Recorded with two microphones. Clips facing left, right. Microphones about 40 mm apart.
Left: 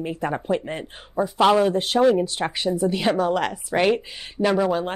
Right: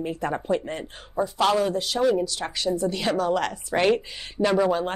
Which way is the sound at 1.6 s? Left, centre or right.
Left.